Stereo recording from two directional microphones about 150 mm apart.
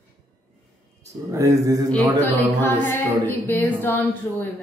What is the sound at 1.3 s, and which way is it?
Mantra, 20° right (ahead or behind).